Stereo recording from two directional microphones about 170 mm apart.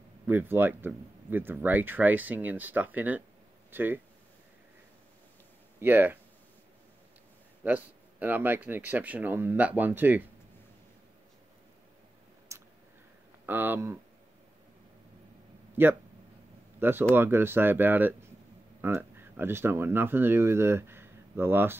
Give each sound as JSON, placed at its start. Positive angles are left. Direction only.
{"t": 0.3, "sound": "speech", "side_deg": -10}
{"t": 5.8, "sound": "speech", "side_deg": -10}
{"t": 7.6, "sound": "speech", "side_deg": -10}
{"t": 12.5, "sound": "a sound", "side_deg": -15}
{"t": 13.5, "sound": "speech", "side_deg": -10}
{"t": 15.8, "sound": "speech", "side_deg": -15}
{"t": 17.1, "sound": "speech", "side_deg": -15}